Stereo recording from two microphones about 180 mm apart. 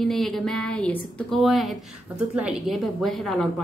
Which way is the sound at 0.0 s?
Centre (ahead or behind).